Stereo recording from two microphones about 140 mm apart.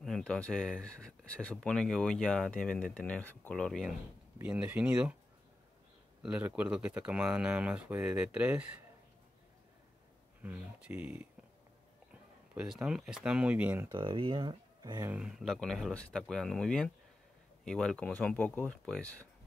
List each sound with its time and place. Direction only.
0.0 s speech: 5° left (ahead or behind)
4.4 s speech: 10° right (ahead or behind)
6.2 s speech: 10° right (ahead or behind)
10.4 s speech: 10° right (ahead or behind)
12.1 s speech: 5° right (ahead or behind)
13.9 s speech: 35° right (ahead or behind)
15.0 s speech: 5° right (ahead or behind)